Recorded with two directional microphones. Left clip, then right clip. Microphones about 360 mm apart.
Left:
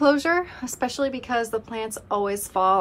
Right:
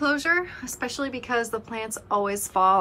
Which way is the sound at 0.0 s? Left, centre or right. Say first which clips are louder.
Left 3 dB; centre.